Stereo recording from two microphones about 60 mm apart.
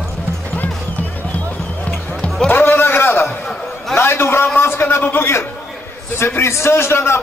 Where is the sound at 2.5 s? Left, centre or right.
Left.